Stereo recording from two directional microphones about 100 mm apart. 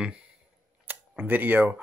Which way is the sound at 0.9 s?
20° right (ahead or behind).